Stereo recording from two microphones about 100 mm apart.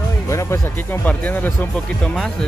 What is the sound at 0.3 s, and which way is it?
Speech, 30° left (ahead or behind).